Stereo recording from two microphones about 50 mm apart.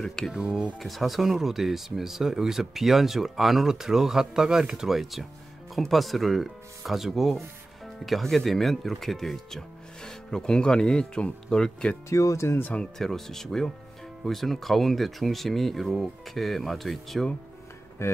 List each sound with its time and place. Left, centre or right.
0.0 s speech: centre
0.3 s speech: centre
0.7 s speech: centre
12.1 s speech: left
13.0 s speech: centre
18.0 s speech: left